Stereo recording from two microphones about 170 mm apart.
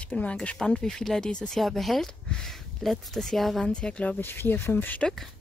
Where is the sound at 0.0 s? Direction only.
5° left (ahead or behind).